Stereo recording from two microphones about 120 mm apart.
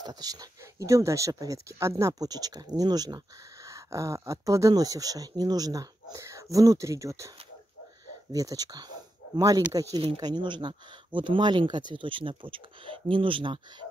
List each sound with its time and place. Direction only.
0.0 s speech: 30° right (ahead or behind)